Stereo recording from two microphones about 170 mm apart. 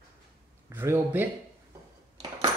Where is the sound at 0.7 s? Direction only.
10° right (ahead or behind).